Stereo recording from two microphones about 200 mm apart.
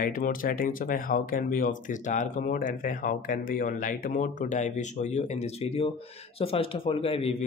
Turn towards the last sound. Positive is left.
turn(degrees=30)  # may be behind; listen again after turning